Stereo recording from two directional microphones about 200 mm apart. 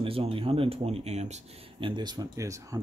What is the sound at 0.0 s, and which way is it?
Speech, 25° right (ahead or behind).